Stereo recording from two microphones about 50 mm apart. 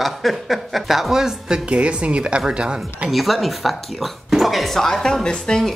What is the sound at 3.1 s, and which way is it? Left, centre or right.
Speech, centre.